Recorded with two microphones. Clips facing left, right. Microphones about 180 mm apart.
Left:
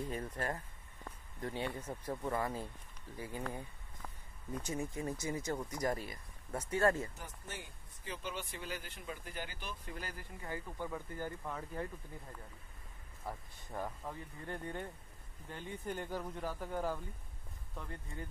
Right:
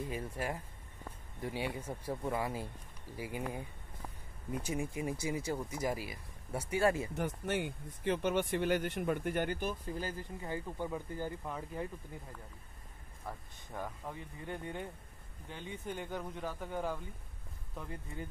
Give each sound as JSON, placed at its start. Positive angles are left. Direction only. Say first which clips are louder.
{"t": 0.1, "sound": "speech", "louder": "right 1 dB", "side_deg": -10}
{"t": 7.2, "sound": "speech", "louder": "right 13 dB", "side_deg": -70}
{"t": 9.8, "sound": "speech", "louder": "right 7 dB", "side_deg": -30}
{"t": 13.3, "sound": "speech", "louder": "left 1 dB", "side_deg": 5}
{"t": 14.4, "sound": "speech", "louder": "right 1 dB", "side_deg": -5}